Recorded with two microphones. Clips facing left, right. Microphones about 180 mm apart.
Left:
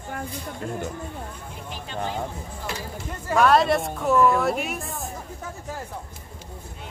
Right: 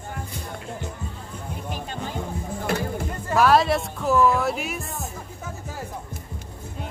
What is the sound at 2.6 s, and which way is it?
Music, 55° right (ahead or behind).